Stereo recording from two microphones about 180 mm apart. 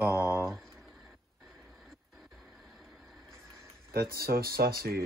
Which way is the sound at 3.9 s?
60° right (ahead or behind).